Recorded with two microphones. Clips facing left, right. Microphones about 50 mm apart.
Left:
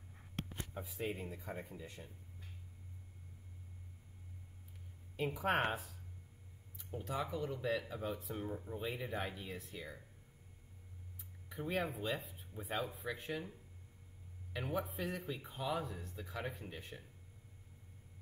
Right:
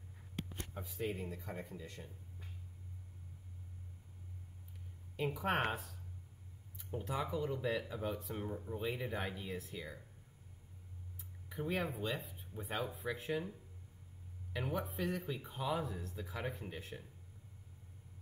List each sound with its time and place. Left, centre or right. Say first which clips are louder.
0.5 s a sound: left 1 dB; left
1.0 s speech: right 1 dB; centre
5.1 s speech: left 1 dB; centre
7.0 s speech: right 1 dB; centre
11.4 s speech: even; centre